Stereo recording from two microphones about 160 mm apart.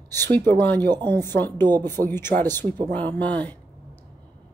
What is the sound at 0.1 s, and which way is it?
A woman's voice, 15° left (ahead or behind).